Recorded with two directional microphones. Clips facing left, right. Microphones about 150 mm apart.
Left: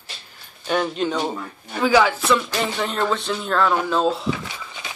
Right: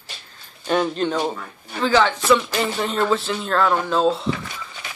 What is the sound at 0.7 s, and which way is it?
Speech, 5° left (ahead or behind).